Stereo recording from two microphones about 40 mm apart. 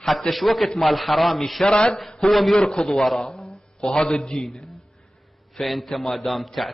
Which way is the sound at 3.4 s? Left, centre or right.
Centre.